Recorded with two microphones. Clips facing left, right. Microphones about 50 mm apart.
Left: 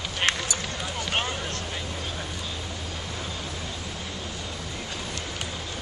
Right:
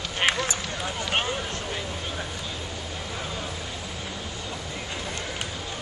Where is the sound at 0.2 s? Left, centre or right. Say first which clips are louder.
Right 2 dB; centre.